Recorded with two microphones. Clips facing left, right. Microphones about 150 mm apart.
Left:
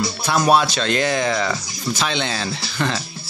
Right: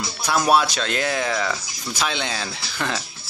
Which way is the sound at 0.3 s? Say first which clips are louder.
Left 2 dB; 5° right (ahead or behind).